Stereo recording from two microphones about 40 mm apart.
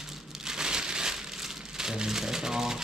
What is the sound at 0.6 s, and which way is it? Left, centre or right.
Crumpling, centre.